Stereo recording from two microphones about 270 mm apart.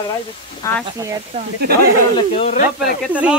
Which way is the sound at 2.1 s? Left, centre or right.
Left.